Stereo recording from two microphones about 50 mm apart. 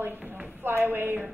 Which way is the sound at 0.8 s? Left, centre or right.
Right.